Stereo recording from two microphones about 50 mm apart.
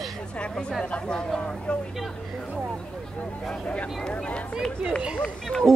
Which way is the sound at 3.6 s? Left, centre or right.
Left.